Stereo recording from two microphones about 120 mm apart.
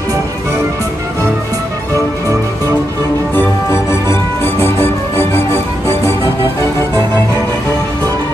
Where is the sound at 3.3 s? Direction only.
20° left (ahead or behind).